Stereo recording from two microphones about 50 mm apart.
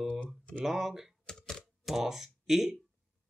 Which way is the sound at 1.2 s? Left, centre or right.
Centre.